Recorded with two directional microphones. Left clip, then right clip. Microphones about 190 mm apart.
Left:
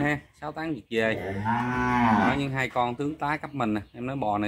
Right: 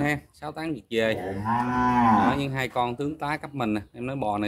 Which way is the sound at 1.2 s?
15° left (ahead or behind).